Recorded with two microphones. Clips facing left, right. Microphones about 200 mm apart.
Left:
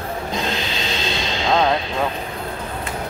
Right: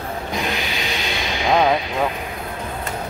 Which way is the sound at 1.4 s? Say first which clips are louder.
Right 1 dB; 15° right (ahead or behind).